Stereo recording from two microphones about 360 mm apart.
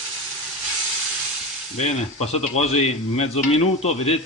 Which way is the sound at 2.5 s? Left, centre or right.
Centre.